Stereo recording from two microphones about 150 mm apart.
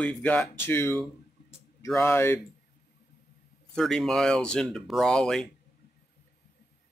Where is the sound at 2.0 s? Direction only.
15° left (ahead or behind).